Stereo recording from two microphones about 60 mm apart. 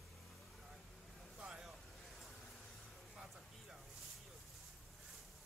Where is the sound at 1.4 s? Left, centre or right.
Centre.